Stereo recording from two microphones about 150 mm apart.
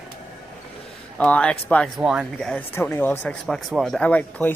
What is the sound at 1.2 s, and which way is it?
Speech, 5° left (ahead or behind).